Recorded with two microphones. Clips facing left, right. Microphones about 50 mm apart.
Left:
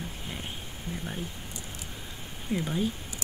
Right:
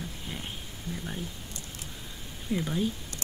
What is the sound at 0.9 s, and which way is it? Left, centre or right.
Speech, left.